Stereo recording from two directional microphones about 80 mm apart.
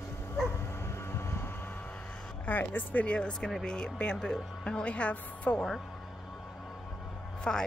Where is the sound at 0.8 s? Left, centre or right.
Left.